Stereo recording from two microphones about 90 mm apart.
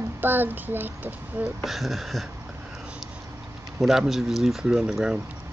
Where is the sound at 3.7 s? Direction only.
5° right (ahead or behind).